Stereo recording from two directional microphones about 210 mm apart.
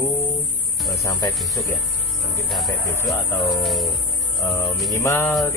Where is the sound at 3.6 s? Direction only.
Centre (ahead or behind).